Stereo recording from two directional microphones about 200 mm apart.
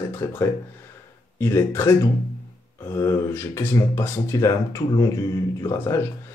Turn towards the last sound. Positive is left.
turn(degrees=10)  # may be behind; listen again after turning